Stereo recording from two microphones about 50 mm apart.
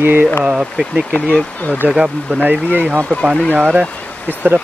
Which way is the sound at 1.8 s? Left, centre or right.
Centre.